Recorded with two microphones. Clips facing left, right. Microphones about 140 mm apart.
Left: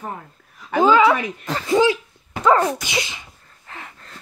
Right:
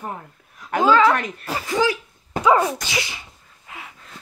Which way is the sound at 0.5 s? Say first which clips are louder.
Left 3 dB; centre (ahead or behind).